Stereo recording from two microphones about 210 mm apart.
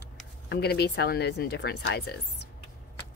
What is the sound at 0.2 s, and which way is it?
Speech, 50° left (ahead or behind).